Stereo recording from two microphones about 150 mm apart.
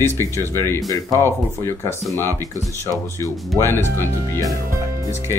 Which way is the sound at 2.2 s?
20° right (ahead or behind).